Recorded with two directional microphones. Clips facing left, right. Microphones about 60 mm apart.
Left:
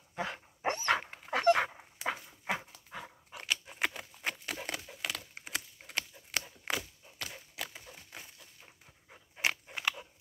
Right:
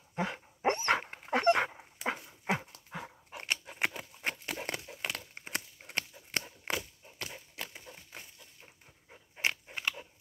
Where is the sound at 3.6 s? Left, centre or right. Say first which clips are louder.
Right 1 dB; right.